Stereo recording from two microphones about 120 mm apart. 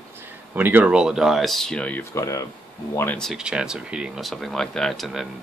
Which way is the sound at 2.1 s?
30° left (ahead or behind).